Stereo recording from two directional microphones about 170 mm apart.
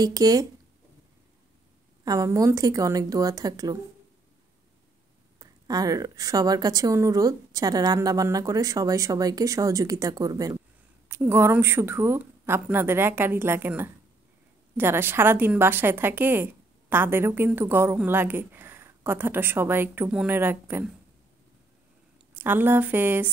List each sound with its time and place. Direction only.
0.0 s a woman's voice: 20° right (ahead or behind)
2.0 s a woman's voice: 20° right (ahead or behind)
5.4 s a woman's voice: 20° right (ahead or behind)
22.3 s a woman's voice: 10° right (ahead or behind)